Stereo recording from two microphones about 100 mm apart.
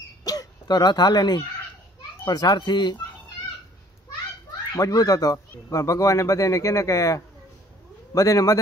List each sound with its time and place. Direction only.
0.2 s a sound: 40° left (ahead or behind)
2.2 s a child's voice: 40° left (ahead or behind)
4.7 s speech: 35° left (ahead or behind)